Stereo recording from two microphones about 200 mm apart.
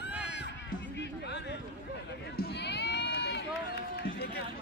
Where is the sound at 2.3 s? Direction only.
55° left (ahead or behind).